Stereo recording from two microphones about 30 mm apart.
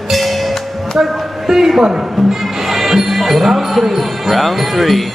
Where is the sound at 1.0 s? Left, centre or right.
Centre.